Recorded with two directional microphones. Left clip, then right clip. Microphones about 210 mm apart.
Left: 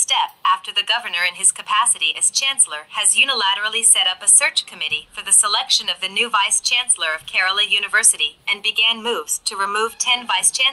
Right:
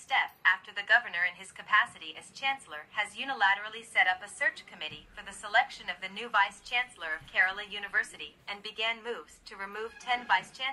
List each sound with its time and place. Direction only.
0.1 s a woman's voice: 35° left (ahead or behind)